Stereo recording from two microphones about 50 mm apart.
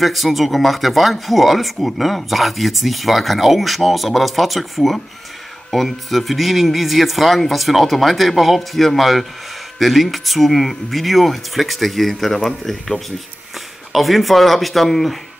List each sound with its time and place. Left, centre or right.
0.0 s speech: centre